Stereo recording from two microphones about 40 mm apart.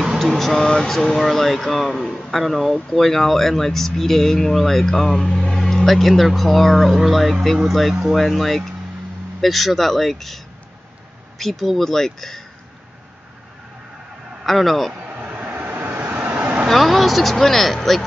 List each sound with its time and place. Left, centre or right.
0.2 s speech: centre
7.9 s speech: centre
8.2 s speech: centre
14.4 s speech: centre
15.0 s vehicle: right
16.0 s vehicle: right
16.6 s speech: centre